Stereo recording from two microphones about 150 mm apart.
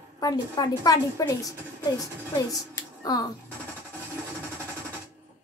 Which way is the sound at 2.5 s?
25° left (ahead or behind).